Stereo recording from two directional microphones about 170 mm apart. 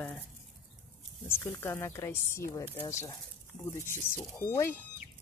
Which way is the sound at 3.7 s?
15° left (ahead or behind).